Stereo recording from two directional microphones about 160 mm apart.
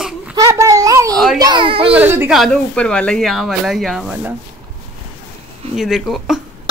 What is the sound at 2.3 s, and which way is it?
Speech, centre (ahead or behind).